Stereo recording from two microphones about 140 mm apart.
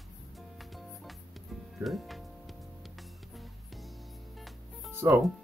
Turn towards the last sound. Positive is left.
turn(degrees=-15)  # may be behind; listen again after turning